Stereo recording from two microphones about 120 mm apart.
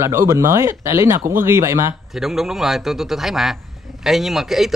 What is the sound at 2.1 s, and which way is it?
Speech, 5° right (ahead or behind).